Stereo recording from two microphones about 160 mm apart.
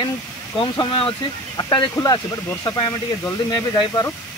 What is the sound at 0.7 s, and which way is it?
Speech, 30° left (ahead or behind).